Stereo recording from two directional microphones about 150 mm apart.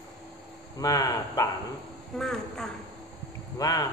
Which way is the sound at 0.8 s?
25° left (ahead or behind).